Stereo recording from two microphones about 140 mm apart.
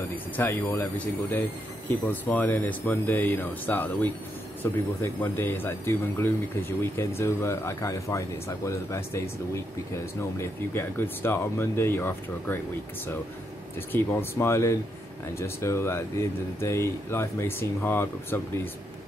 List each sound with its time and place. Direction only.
0.1 s speech: 15° left (ahead or behind)
13.9 s speech: 15° left (ahead or behind)